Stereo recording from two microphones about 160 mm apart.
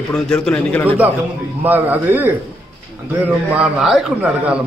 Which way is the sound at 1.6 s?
10° right (ahead or behind).